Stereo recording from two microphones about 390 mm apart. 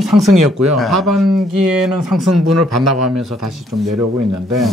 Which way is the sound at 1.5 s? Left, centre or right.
Right.